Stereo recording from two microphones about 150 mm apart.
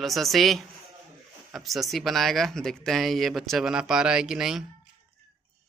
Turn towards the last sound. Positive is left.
turn(degrees=-5)  # may be behind; listen again after turning